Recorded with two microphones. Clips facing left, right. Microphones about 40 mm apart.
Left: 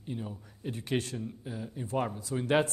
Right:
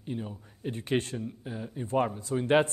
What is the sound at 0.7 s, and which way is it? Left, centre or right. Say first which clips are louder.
Speech: right 3 dB; right.